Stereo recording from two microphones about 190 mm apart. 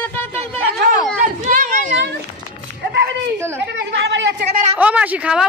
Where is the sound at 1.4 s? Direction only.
45° right (ahead or behind).